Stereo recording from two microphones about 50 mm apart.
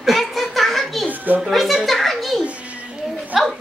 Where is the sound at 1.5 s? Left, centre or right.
Centre.